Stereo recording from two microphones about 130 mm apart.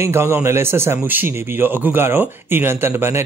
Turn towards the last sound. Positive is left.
turn(degrees=-20)  # may be behind; listen again after turning